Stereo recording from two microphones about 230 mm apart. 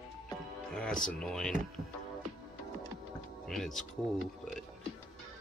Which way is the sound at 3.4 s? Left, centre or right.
Centre.